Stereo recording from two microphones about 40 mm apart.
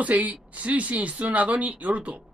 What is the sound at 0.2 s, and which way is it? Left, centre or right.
Speech, right.